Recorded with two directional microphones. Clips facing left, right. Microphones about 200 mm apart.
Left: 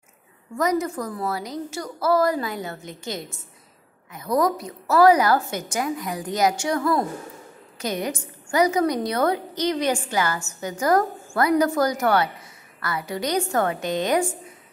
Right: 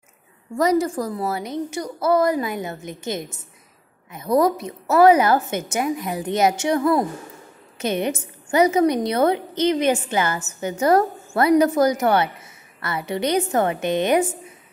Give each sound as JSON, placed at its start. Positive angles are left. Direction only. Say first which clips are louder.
{"t": 0.6, "sound": "a woman's voice", "louder": "right 4 dB", "side_deg": -30}